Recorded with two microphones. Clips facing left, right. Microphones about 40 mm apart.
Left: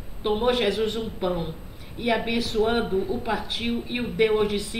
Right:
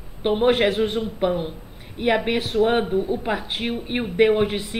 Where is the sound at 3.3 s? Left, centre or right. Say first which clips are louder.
Right 2 dB; right.